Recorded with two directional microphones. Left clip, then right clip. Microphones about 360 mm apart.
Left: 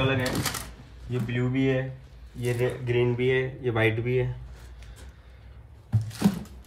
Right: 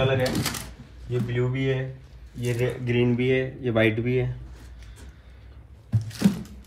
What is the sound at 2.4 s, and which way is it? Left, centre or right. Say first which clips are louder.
Speech: even; left.